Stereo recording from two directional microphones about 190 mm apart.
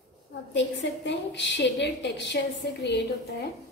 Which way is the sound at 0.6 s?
70° left (ahead or behind).